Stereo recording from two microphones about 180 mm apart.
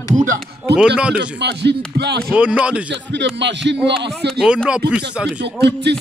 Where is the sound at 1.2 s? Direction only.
70° right (ahead or behind).